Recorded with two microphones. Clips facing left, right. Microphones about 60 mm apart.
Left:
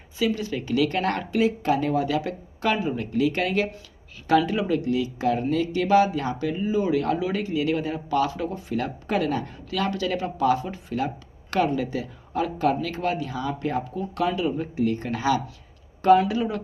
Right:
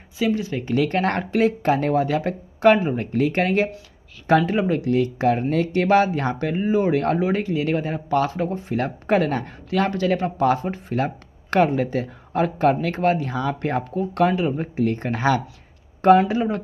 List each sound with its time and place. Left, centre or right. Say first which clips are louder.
0.2 s speech: right 3 dB; right
4.9 s speech: right 4 dB; right